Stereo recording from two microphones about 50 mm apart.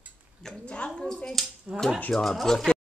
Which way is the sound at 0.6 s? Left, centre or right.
Left.